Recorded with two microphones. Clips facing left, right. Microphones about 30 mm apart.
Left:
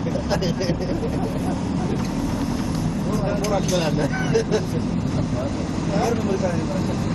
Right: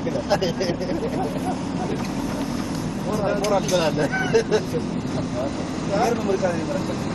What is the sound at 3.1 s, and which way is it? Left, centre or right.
Speech, centre.